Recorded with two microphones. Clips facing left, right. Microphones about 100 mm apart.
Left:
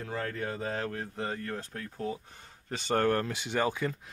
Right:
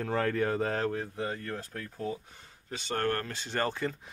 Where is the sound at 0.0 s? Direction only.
60° right (ahead or behind).